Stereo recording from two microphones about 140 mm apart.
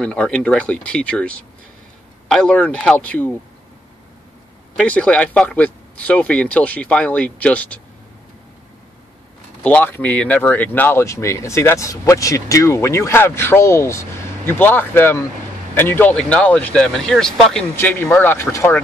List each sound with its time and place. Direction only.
0.0 s speech: 5° left (ahead or behind)
4.7 s speech: 10° left (ahead or behind)
9.6 s speech: 10° left (ahead or behind)
17.7 s speech: 15° left (ahead or behind)